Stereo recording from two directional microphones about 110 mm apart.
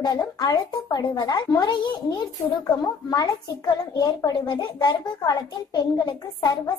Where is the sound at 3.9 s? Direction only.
35° left (ahead or behind).